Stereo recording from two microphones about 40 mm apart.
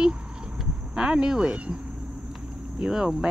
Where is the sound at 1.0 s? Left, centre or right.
Right.